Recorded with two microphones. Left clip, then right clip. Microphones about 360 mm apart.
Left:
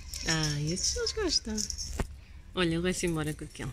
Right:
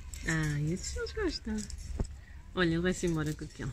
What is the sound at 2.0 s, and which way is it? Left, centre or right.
Basketball bounce, left.